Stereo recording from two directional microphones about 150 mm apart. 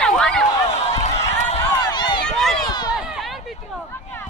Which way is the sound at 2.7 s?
30° left (ahead or behind).